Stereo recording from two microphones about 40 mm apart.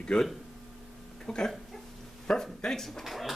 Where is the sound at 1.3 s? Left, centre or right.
Centre.